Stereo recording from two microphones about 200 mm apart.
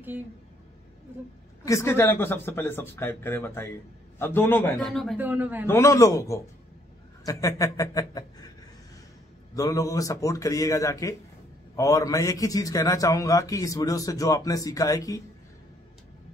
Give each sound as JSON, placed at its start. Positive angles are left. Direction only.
{"t": 1.6, "sound": "a man's voice", "side_deg": 15}
{"t": 5.7, "sound": "a man's voice", "side_deg": 15}
{"t": 9.6, "sound": "a man's voice", "side_deg": 15}